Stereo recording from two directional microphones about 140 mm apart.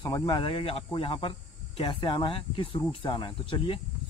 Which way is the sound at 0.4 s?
40° left (ahead or behind).